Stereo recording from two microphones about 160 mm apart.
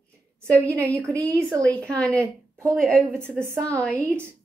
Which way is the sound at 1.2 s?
10° left (ahead or behind).